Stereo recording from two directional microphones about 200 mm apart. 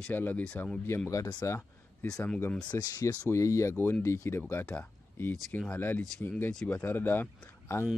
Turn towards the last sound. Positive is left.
turn(degrees=10)  # may be behind; listen again after turning